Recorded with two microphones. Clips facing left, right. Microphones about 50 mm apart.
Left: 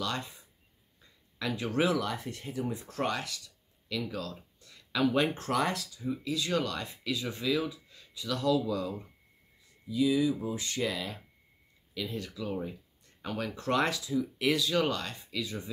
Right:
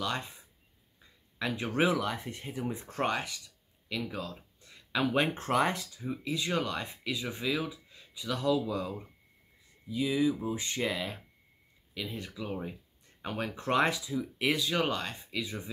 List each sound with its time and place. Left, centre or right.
0.0 s speech: centre
1.4 s speech: right